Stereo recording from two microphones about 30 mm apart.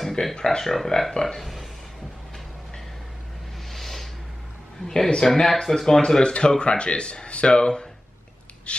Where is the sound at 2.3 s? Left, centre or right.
Centre.